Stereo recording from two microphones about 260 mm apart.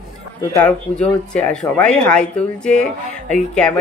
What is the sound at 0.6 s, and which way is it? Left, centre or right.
Speech, centre.